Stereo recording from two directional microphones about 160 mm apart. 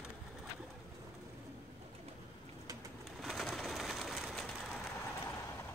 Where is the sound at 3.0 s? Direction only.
Centre (ahead or behind).